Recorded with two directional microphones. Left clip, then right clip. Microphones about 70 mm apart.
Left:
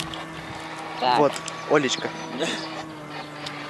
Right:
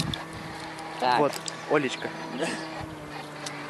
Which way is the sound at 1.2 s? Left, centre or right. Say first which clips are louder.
Left 4 dB; left.